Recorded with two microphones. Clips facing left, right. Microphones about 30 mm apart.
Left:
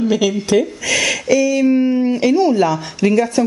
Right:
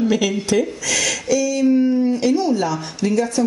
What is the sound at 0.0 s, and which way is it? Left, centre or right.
Speech, centre.